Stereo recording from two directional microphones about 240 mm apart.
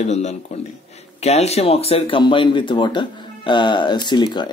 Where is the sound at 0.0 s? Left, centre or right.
Left.